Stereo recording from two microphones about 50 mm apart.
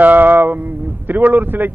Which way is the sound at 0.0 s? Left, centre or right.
Right.